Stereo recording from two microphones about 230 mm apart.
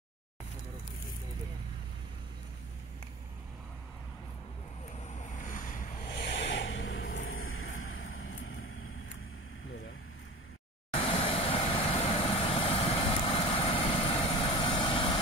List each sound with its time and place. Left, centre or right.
5.0 s boat: left
6.2 s a sound: left
10.9 s vehicle: left